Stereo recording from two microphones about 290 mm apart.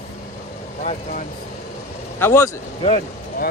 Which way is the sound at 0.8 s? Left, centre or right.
Left.